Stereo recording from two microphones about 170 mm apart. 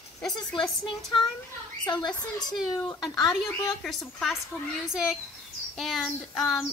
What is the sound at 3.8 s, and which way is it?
A woman's voice, 5° left (ahead or behind).